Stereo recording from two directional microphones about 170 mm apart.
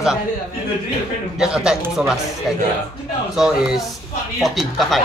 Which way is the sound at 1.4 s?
5° right (ahead or behind).